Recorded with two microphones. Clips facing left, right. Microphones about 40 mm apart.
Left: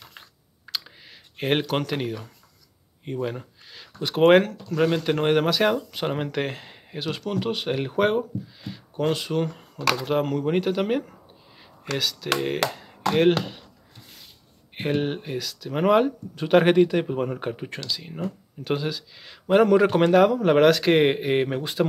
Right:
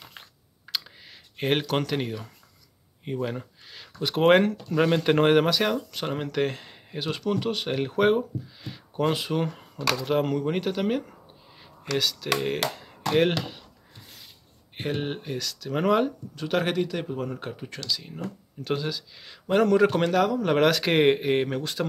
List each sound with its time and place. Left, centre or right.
0.7 s clicking: centre
3.1 s speech: centre
4.6 s speech: centre
5.6 s speech: centre
14.8 s speech: centre
16.3 s speech: left
20.4 s speech: centre